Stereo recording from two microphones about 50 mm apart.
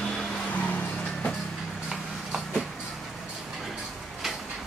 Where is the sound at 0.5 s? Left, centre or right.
Left.